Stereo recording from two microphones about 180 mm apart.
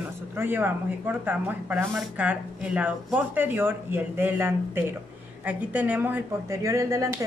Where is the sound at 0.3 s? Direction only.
10° right (ahead or behind).